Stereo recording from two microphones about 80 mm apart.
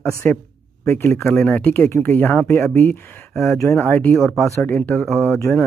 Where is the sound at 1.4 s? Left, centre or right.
Left.